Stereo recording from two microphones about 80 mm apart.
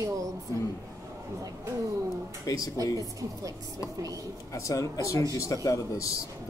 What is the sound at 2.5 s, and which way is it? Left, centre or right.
Speech, left.